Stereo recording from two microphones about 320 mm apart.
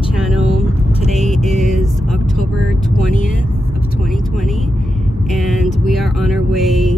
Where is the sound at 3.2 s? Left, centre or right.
Left.